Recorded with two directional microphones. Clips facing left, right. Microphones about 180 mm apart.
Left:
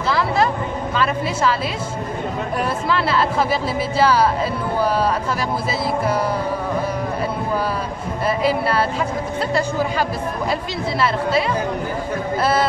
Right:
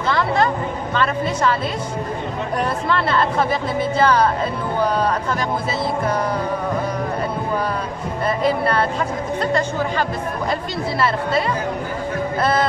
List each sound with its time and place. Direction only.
0.9 s a woman's voice: 5° left (ahead or behind)
2.9 s a woman's voice: 5° left (ahead or behind)
8.4 s a woman's voice: 5° left (ahead or behind)
12.4 s speech: 5° left (ahead or behind)